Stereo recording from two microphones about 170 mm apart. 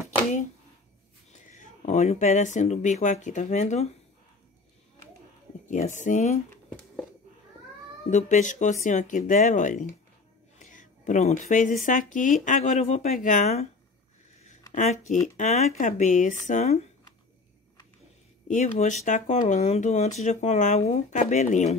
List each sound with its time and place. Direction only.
1.9 s speech: 45° left (ahead or behind)
5.9 s speech: 45° left (ahead or behind)
8.1 s a woman's voice: 45° left (ahead or behind)
14.7 s speech: 45° left (ahead or behind)
18.5 s speech: 45° left (ahead or behind)